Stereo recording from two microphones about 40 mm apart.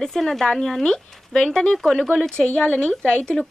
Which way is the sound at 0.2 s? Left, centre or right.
Centre.